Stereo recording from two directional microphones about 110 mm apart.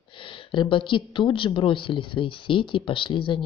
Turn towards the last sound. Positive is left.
turn(degrees=50)  # may be behind; listen again after turning